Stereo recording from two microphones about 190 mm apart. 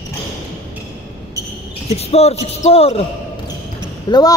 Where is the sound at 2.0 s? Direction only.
35° left (ahead or behind).